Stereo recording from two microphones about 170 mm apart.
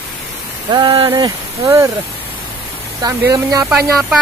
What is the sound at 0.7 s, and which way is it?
Speech, 25° right (ahead or behind).